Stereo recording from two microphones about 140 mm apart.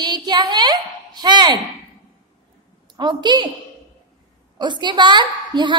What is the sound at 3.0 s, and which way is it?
Speech, 30° right (ahead or behind).